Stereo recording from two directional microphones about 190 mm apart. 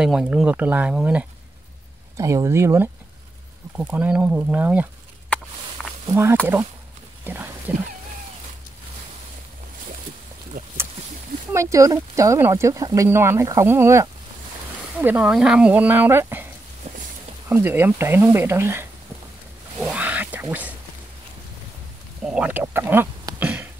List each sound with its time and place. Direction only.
0.0 s speech: 5° right (ahead or behind)
5.8 s a sound: centre (ahead or behind)
7.2 s wild animals: 10° right (ahead or behind)
10.5 s a sound: 50° right (ahead or behind)
11.5 s speech: 15° right (ahead or behind)
16.8 s walk: 35° right (ahead or behind)
17.5 s speech: 10° right (ahead or behind)
22.2 s speech: 5° right (ahead or behind)